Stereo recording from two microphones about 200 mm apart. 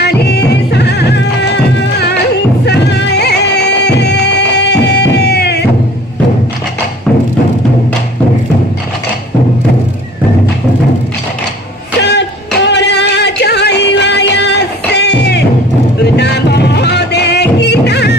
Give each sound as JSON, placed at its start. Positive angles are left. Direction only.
{"t": 0.0, "sound": "music", "side_deg": 55}
{"t": 12.0, "sound": "music", "side_deg": 55}